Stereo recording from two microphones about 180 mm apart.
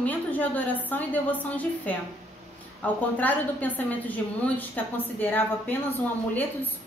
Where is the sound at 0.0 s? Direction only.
10° left (ahead or behind).